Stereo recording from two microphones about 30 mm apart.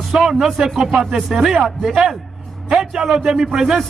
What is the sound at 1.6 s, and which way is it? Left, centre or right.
A man's voice, centre.